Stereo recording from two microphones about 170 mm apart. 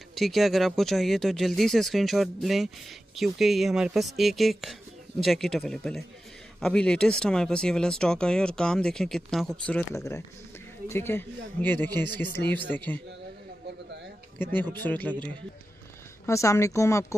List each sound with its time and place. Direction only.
0.1 s speech: centre (ahead or behind)
9.9 s speech: 15° left (ahead or behind)
14.4 s speech: 10° left (ahead or behind)
16.3 s speech: 15° left (ahead or behind)